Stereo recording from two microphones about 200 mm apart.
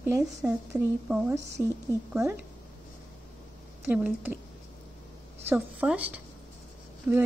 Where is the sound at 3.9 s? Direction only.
10° right (ahead or behind).